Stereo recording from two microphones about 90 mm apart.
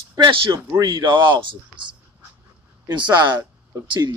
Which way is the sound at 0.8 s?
60° right (ahead or behind).